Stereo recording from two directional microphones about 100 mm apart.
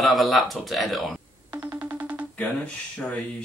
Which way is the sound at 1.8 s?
15° right (ahead or behind).